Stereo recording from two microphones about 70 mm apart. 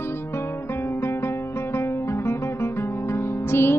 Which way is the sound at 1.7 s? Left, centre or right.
Left.